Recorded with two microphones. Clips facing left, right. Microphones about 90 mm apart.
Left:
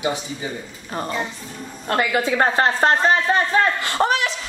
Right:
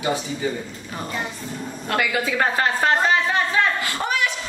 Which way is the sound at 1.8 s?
30° left (ahead or behind).